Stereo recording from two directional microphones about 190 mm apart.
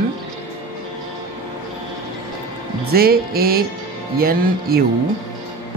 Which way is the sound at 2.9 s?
55° right (ahead or behind).